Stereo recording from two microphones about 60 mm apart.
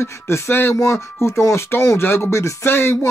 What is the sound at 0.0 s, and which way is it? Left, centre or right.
Speech, left.